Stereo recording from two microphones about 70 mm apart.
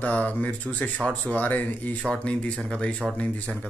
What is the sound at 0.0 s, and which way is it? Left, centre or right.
Speech, left.